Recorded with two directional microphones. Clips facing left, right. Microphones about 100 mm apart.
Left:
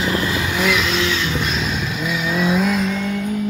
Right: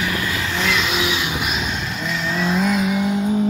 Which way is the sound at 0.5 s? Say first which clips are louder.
Left 2 dB; centre (ahead or behind).